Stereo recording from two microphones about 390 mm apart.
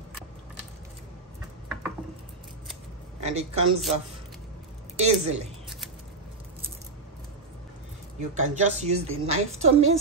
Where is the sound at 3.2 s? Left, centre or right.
Centre.